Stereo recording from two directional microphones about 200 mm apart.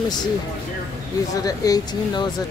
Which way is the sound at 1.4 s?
20° left (ahead or behind).